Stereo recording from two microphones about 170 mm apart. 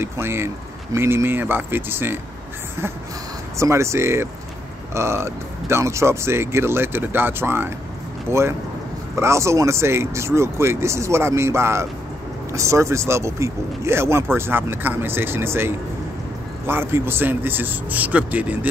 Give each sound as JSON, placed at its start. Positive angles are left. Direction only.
{"t": 0.0, "sound": "speech", "side_deg": -15}
{"t": 3.5, "sound": "speech", "side_deg": -15}